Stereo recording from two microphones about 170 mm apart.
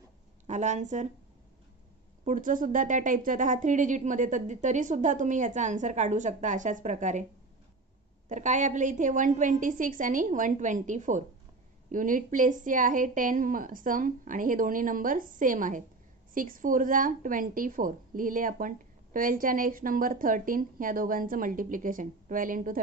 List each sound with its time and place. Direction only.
0.5 s a woman's voice: 45° right (ahead or behind)
2.2 s a woman's voice: 50° right (ahead or behind)
8.3 s a woman's voice: 45° right (ahead or behind)